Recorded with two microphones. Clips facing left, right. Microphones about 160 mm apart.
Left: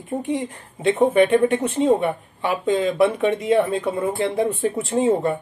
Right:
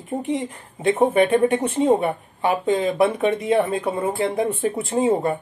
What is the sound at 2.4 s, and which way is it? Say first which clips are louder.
Speech: even; 30° right (ahead or behind).